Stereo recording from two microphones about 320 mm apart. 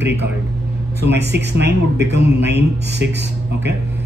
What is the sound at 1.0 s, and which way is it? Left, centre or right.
A man's voice, right.